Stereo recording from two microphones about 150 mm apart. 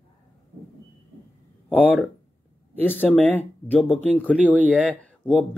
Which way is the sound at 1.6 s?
10° left (ahead or behind).